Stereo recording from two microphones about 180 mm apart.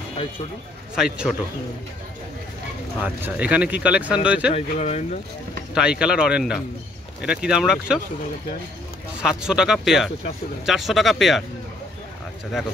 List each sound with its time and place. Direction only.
0.9 s speech: 5° right (ahead or behind)
3.0 s speech: 10° right (ahead or behind)
4.6 s speech: 35° left (ahead or behind)
5.8 s speech: 5° right (ahead or behind)
9.2 s speech: 5° right (ahead or behind)